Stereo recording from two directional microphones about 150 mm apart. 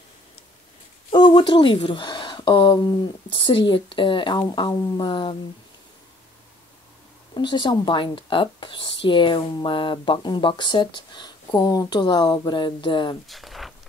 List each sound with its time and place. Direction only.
1.1 s a woman's voice: 30° left (ahead or behind)
7.3 s a woman's voice: 30° left (ahead or behind)
13.3 s a sound: centre (ahead or behind)